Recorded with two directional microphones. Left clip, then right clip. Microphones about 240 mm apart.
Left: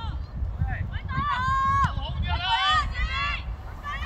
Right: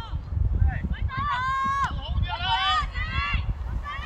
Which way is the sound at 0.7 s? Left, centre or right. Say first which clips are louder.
Left 2 dB; left.